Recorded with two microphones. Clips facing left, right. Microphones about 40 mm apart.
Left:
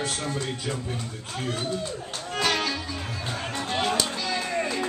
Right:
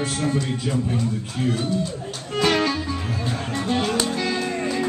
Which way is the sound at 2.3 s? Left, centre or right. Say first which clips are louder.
Right 6 dB; centre.